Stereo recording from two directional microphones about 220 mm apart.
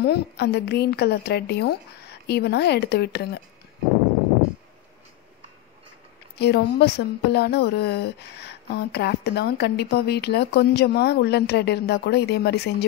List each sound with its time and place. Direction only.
0.0 s a woman's voice: 50° left (ahead or behind)
6.3 s a woman's voice: 45° left (ahead or behind)